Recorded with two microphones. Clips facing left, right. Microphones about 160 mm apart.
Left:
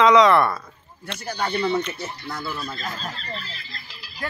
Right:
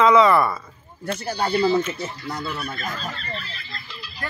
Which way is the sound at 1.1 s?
35° right (ahead or behind).